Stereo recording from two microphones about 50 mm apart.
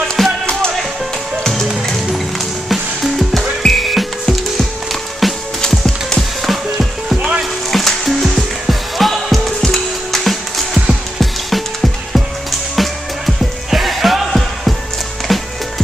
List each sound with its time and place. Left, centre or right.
0.2 s music: centre
1.4 s music: centre
2.7 s music: centre
5.6 s music: centre
6.4 s music: centre
7.2 s music: right
7.7 s music: centre